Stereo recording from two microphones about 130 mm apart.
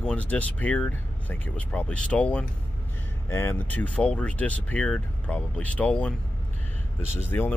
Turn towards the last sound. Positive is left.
turn(degrees=15)  # may be behind; listen again after turning